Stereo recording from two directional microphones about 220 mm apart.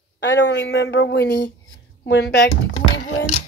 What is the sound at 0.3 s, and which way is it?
Speech, 50° left (ahead or behind).